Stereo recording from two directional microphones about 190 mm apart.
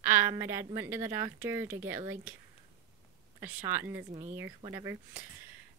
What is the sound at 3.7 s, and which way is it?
A woman's voice, 10° right (ahead or behind).